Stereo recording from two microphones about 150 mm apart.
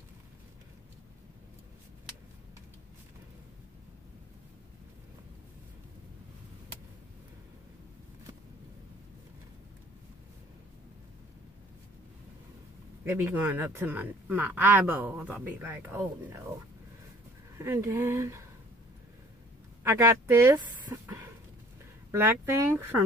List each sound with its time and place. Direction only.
13.0 s speech: 15° right (ahead or behind)
17.6 s speech: 20° right (ahead or behind)
19.8 s speech: 20° right (ahead or behind)
20.5 s dog: 20° right (ahead or behind)
22.1 s speech: 15° right (ahead or behind)